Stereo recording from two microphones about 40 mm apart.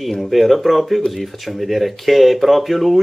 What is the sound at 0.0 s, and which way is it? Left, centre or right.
Speech, centre.